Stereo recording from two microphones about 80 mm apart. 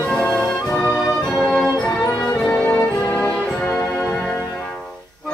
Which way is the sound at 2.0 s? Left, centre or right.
Left.